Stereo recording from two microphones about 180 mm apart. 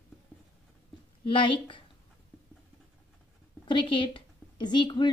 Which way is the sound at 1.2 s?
25° left (ahead or behind).